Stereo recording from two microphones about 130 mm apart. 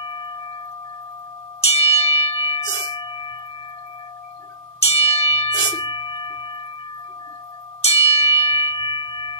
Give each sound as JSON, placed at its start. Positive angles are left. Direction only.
{"t": 1.6, "sound": "church bell", "side_deg": 50}
{"t": 4.8, "sound": "music", "side_deg": 50}
{"t": 5.6, "sound": "bell", "side_deg": 35}
{"t": 7.8, "sound": "bell", "side_deg": 50}